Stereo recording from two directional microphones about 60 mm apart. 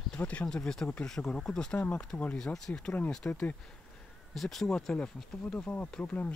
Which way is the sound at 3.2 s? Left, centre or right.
Left.